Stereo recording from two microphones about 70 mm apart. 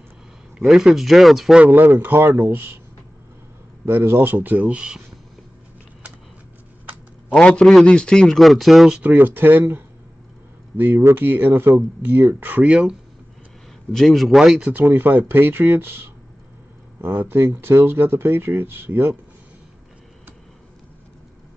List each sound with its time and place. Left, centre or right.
0.7 s speech: centre
1.6 s speech: right
3.8 s speech: right; by 5.0 s centre
7.3 s a man's voice: centre
9.0 s speech: right
10.9 s speech: right
12.6 s speech: centre
13.9 s speech: centre
14.6 s speech: right